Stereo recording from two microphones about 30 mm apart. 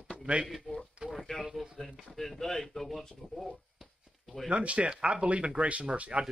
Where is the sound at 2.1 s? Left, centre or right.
Centre.